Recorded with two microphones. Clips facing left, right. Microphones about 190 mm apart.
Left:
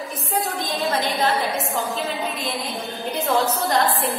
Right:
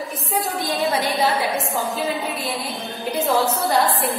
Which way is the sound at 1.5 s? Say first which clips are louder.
Right 1 dB; centre (ahead or behind).